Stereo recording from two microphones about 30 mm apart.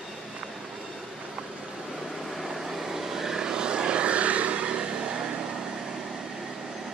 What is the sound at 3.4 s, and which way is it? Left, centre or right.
Vehicle, right.